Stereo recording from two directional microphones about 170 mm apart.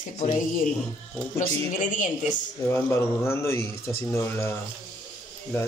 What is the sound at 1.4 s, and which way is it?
A woman's voice, 50° left (ahead or behind).